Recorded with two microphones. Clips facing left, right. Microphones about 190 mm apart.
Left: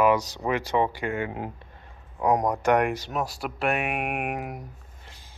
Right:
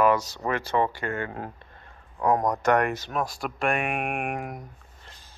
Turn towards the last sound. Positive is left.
turn(degrees=10)  # may be behind; listen again after turning